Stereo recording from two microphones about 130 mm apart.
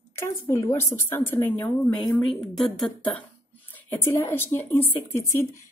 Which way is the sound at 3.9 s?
20° left (ahead or behind).